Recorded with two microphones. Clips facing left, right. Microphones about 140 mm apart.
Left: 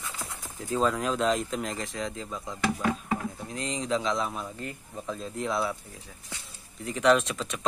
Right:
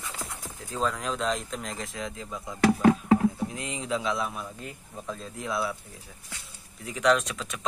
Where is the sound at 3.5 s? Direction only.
10° right (ahead or behind).